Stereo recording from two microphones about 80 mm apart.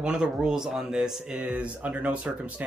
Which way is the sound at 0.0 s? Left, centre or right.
Centre.